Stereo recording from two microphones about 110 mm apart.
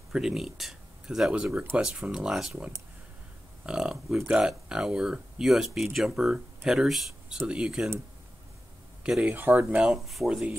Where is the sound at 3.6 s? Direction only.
10° right (ahead or behind).